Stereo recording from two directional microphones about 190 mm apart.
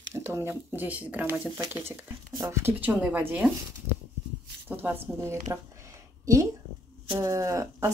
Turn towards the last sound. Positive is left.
turn(degrees=-15)  # may be behind; listen again after turning